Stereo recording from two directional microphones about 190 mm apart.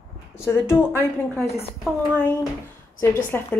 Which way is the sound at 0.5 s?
10° left (ahead or behind).